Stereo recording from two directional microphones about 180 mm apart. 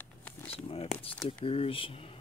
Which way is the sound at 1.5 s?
30° left (ahead or behind).